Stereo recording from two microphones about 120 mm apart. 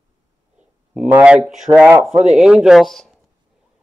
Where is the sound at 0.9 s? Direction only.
10° right (ahead or behind).